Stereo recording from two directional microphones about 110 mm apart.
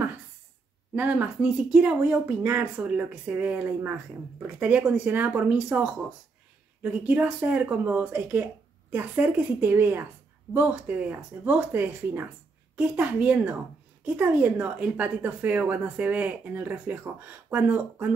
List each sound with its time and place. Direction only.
0.9 s speech: 15° right (ahead or behind)